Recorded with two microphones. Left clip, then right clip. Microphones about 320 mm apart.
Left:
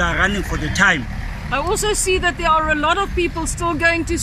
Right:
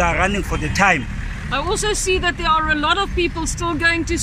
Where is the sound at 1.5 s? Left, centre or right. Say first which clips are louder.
Left 1 dB; centre.